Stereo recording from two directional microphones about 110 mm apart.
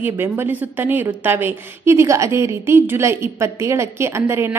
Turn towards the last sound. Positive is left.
turn(degrees=-25)  # may be behind; listen again after turning